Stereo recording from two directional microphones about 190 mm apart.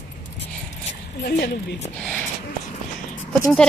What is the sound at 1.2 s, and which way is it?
Speech, 60° left (ahead or behind).